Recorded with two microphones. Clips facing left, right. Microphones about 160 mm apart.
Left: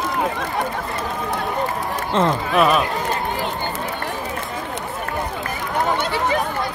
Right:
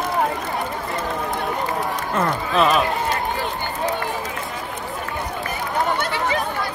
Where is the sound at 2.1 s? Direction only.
25° left (ahead or behind).